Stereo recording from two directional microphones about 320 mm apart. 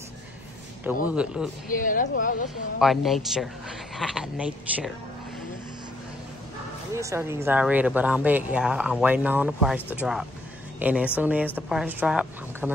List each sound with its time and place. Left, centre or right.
1.1 s speech: centre
1.7 s speech: left
2.8 s speech: centre
6.9 s speech: centre